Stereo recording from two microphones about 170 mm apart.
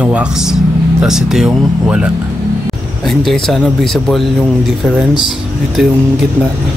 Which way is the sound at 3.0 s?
Centre (ahead or behind).